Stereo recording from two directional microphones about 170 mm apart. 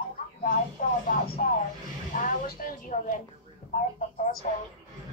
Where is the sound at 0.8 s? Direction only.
50° left (ahead or behind).